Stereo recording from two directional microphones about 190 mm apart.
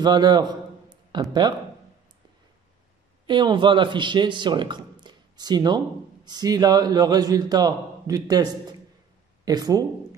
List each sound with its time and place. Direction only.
0.0 s a man's voice: 20° right (ahead or behind)
3.3 s a man's voice: 25° right (ahead or behind)